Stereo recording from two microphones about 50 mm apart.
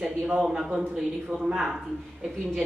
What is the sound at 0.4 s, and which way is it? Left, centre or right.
Speech, centre.